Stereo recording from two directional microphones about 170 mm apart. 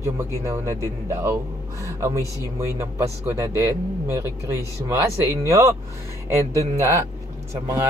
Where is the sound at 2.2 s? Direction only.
20° left (ahead or behind).